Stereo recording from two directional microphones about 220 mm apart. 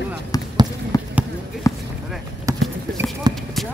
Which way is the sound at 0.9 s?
15° left (ahead or behind).